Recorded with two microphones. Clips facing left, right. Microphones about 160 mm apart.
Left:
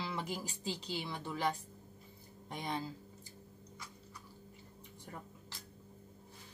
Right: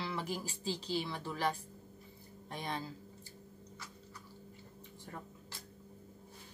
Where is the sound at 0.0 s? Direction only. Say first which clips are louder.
Right 1 dB; 20° left (ahead or behind).